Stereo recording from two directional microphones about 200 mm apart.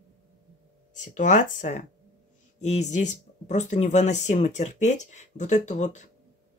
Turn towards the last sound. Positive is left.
turn(degrees=35)  # may be behind; listen again after turning